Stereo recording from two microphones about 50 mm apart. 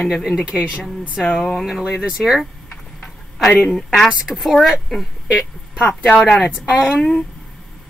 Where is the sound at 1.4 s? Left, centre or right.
Centre.